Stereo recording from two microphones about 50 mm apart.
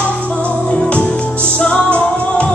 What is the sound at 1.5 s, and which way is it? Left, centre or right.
Music, left.